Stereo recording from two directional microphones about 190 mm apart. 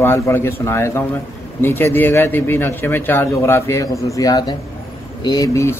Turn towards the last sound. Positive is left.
turn(degrees=15)  # may be behind; listen again after turning